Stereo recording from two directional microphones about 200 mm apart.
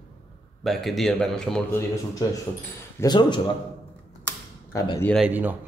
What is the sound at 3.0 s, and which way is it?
Speech, 20° left (ahead or behind).